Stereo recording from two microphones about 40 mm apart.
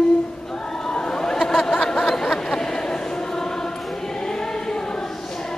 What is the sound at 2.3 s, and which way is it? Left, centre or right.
Choir, centre.